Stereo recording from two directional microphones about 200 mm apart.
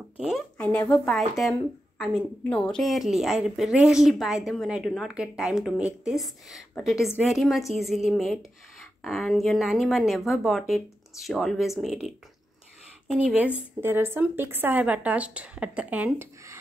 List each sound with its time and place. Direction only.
0.6 s a woman's voice: 5° left (ahead or behind)
13.2 s a woman's voice: 10° right (ahead or behind)